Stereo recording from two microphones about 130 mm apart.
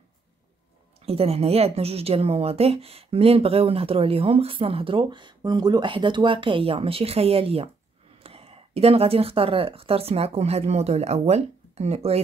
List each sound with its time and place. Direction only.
0.9 s a woman's voice: 50° right (ahead or behind)